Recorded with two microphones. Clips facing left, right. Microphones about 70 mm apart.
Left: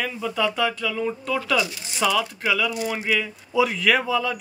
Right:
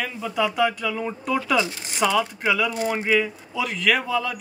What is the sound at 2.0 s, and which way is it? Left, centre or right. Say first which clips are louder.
Speech: right 1 dB; centre.